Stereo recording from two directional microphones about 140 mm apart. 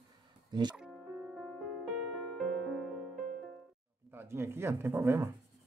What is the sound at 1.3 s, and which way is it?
Music, 5° left (ahead or behind).